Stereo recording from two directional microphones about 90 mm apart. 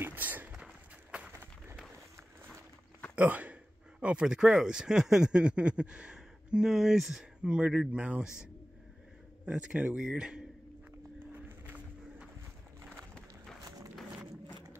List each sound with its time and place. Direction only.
0.0 s a sound: 20° right (ahead or behind)
3.2 s speech: 15° right (ahead or behind)
9.5 s speech: 10° right (ahead or behind)
13.7 s run: 40° right (ahead or behind)